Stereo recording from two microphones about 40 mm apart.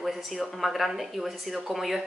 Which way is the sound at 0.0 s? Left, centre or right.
Centre.